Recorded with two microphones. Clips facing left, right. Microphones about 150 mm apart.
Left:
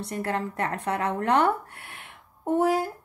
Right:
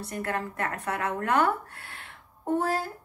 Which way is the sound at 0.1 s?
25° left (ahead or behind).